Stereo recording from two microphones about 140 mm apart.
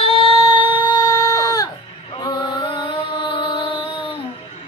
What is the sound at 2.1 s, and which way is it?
Mantra, 30° left (ahead or behind).